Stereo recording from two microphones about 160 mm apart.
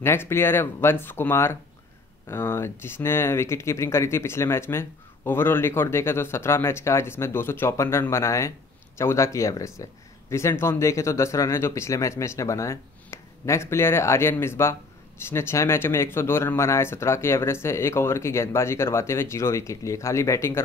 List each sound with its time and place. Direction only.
0.0 s speech: 15° left (ahead or behind)